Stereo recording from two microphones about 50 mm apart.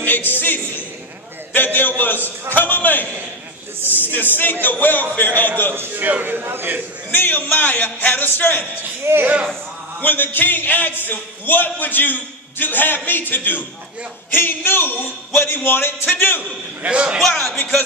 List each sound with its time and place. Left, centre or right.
0.0 s a sound: left
1.5 s a man's voice: left
5.8 s a man's voice: right
7.1 s a man's voice: left
9.1 s a man's voice: right
10.0 s a man's voice: left
16.8 s a man's voice: right